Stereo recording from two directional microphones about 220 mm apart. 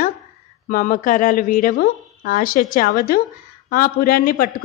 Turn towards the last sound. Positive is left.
turn(degrees=40)  # may be behind; listen again after turning